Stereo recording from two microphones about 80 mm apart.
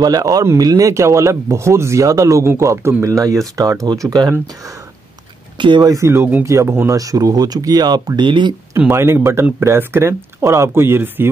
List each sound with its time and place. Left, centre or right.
0.0 s speech: right
5.6 s speech: right
5.9 s speech: right
8.7 s speech: right